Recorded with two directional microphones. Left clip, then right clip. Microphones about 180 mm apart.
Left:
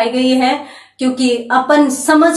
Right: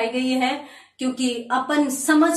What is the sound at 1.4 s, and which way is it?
Speech, 5° left (ahead or behind).